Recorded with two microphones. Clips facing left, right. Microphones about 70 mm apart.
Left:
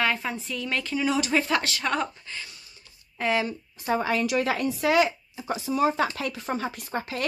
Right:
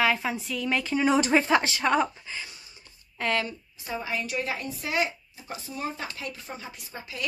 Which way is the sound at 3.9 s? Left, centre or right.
Left.